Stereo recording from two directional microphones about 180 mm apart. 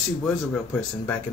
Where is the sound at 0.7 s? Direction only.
10° left (ahead or behind).